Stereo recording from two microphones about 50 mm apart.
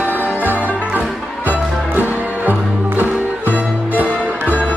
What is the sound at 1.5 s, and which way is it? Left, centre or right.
Music, right.